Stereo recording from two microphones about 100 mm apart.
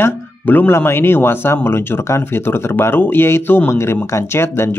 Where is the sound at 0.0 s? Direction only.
20° left (ahead or behind).